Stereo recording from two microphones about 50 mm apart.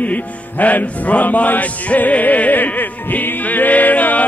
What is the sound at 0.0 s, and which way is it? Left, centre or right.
Music, left.